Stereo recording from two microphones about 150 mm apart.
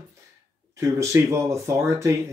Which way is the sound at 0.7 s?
20° right (ahead or behind).